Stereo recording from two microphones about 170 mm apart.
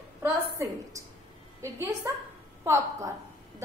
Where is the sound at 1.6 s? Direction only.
15° right (ahead or behind).